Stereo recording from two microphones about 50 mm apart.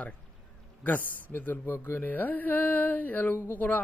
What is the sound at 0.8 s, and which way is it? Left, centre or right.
Speech, left.